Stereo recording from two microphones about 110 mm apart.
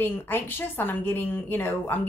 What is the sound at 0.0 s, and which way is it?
A woman's voice, 20° left (ahead or behind).